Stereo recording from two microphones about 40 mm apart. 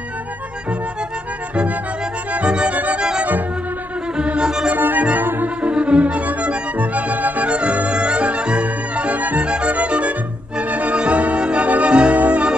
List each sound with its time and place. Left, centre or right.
2.3 s music: right
2.7 s music: right
3.0 s music: right
4.7 s music: right
5.6 s music: right
12.2 s music: right